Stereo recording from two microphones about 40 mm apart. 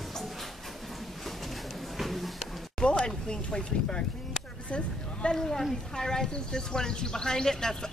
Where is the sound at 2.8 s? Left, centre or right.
Left.